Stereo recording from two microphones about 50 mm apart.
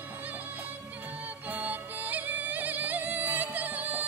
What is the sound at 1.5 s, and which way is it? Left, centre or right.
Music, right.